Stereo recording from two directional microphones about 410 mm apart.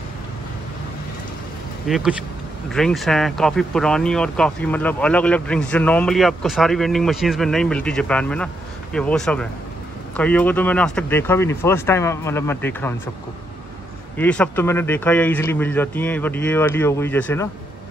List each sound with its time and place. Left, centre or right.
1.9 s speech: centre
14.1 s speech: centre